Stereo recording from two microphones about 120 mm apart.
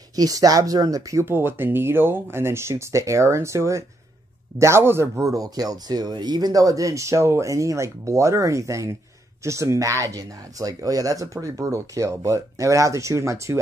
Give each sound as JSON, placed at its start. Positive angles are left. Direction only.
{"t": 0.1, "sound": "speech", "side_deg": -30}
{"t": 1.2, "sound": "speech", "side_deg": -20}